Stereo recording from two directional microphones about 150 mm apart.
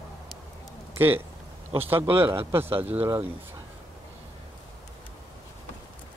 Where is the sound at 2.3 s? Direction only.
15° right (ahead or behind).